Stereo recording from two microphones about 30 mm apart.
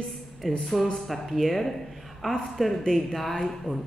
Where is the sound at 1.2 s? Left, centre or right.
Centre.